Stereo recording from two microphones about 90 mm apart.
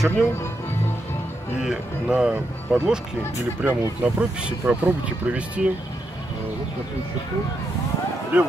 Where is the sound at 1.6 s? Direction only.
10° right (ahead or behind).